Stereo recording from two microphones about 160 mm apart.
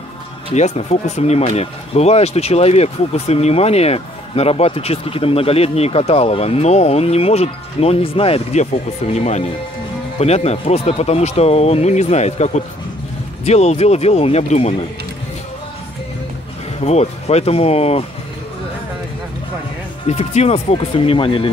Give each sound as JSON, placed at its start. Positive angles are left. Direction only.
{"t": 0.5, "sound": "speech", "side_deg": 40}
{"t": 16.8, "sound": "speech", "side_deg": 45}
{"t": 20.1, "sound": "speech", "side_deg": 40}